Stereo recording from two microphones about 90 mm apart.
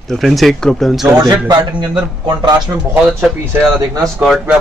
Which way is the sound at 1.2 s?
45° right (ahead or behind).